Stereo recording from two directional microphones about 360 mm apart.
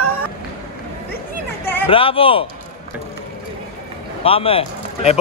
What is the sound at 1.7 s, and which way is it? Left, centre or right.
Speech, centre.